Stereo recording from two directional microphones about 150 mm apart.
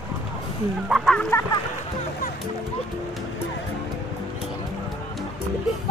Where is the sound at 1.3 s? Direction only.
15° left (ahead or behind).